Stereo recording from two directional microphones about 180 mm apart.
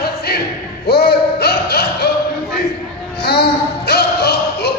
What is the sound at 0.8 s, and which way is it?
Music, 60° left (ahead or behind).